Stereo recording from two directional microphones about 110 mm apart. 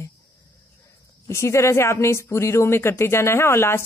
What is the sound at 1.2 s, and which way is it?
Speech, 25° left (ahead or behind).